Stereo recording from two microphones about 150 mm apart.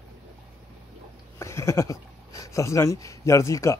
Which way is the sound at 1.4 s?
20° left (ahead or behind).